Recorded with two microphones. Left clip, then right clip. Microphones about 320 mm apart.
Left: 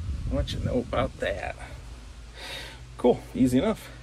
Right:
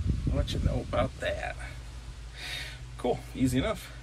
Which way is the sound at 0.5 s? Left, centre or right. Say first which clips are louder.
Left 5 dB; left.